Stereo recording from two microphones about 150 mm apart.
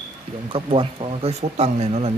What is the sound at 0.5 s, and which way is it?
Speech, 35° right (ahead or behind).